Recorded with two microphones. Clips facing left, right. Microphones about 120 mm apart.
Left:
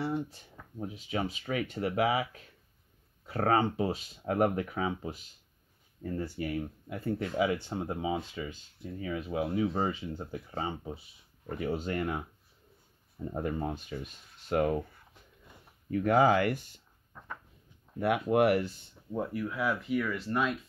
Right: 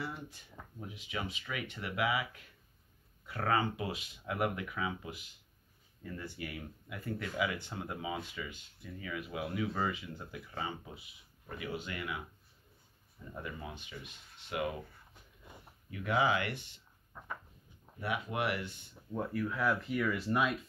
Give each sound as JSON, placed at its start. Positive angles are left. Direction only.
{"t": 0.0, "sound": "a sound", "side_deg": 30}
{"t": 0.7, "sound": "speech", "side_deg": 40}
{"t": 13.2, "sound": "speech", "side_deg": 50}
{"t": 15.9, "sound": "speech", "side_deg": 50}
{"t": 17.1, "sound": "a sound", "side_deg": -10}
{"t": 17.9, "sound": "speech", "side_deg": 55}
{"t": 19.1, "sound": "speech", "side_deg": 10}